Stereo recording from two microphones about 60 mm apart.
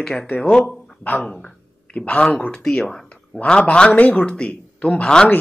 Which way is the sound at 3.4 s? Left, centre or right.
Centre.